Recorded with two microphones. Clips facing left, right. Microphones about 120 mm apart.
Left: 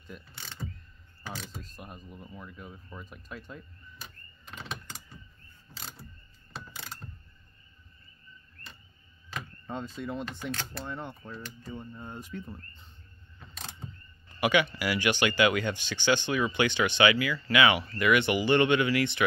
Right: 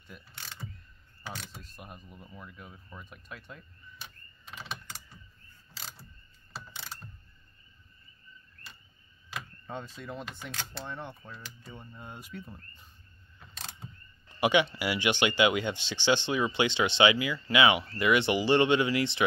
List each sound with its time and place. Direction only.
0.0 s mechanisms: centre (ahead or behind)
1.3 s speech: centre (ahead or behind)
5.8 s a sound: centre (ahead or behind)
6.5 s mechanisms: centre (ahead or behind)
9.7 s speech: centre (ahead or behind)
14.4 s speech: 25° right (ahead or behind)